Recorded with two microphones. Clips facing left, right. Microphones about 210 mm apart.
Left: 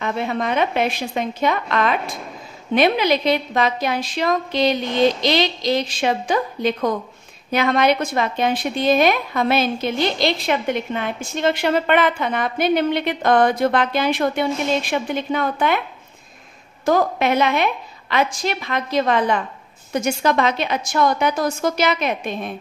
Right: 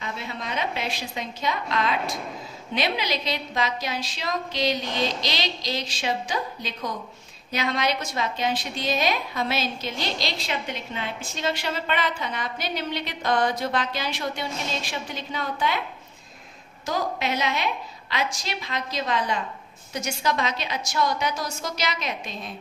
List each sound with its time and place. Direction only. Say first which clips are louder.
0.0 s a woman's voice: left 11 dB; 60° left (ahead or behind)
16.8 s a woman's voice: left 9 dB; 55° left (ahead or behind)